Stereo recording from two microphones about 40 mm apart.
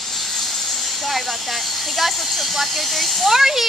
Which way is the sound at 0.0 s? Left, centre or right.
Centre.